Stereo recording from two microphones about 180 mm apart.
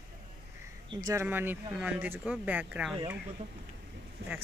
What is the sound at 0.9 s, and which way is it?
Speech, 20° right (ahead or behind).